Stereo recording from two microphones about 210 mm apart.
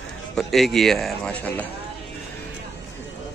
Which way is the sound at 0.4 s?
Centre (ahead or behind).